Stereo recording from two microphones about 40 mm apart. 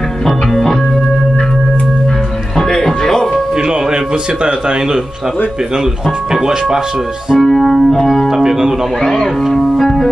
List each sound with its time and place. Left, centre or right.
0.3 s music: centre
2.5 s music: centre
3.5 s speech: right
6.3 s speech: centre
7.3 s music: centre
8.5 s speech: centre
9.0 s music: centre